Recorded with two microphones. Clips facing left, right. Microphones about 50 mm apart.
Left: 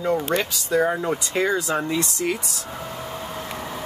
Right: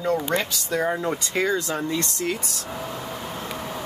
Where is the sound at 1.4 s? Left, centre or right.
Centre.